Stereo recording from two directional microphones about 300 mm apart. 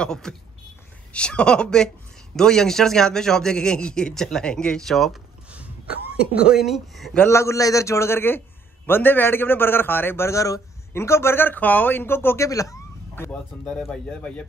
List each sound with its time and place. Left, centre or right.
0.0 s a man's voice: centre
5.9 s speech: left
6.4 s a man's voice: centre